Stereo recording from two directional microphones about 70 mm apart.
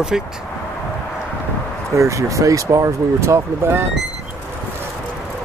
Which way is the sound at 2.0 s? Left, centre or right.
Right.